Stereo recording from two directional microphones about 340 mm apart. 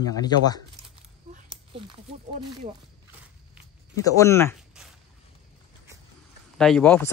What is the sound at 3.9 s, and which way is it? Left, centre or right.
Speech, centre.